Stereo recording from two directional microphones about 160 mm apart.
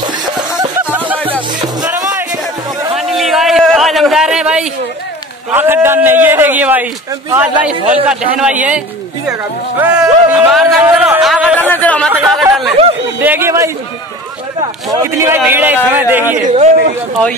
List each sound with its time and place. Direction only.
0.9 s music: 10° right (ahead or behind)
1.6 s music: 20° right (ahead or behind)
3.0 s a sound: centre (ahead or behind)
5.5 s a man's voice: 15° right (ahead or behind)
8.3 s a man's voice: 10° right (ahead or behind)
11.6 s speech: 10° left (ahead or behind)
12.1 s speech: 10° right (ahead or behind)
13.2 s a man's voice: 15° right (ahead or behind)
15.0 s a man's voice: 15° right (ahead or behind)
16.3 s a man's voice: 50° right (ahead or behind)